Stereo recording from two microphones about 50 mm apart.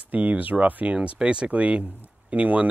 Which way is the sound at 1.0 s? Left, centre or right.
Centre.